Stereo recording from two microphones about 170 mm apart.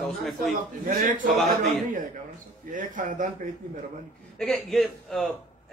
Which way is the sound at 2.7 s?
50° right (ahead or behind).